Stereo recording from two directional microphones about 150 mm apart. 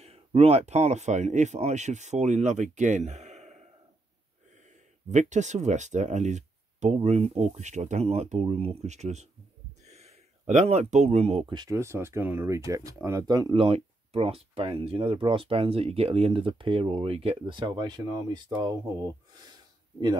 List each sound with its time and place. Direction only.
0.0 s speech: 40° right (ahead or behind)
5.1 s speech: 50° right (ahead or behind)
11.5 s speech: 25° right (ahead or behind)